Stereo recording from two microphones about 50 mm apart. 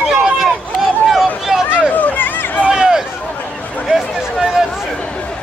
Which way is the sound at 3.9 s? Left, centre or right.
Centre.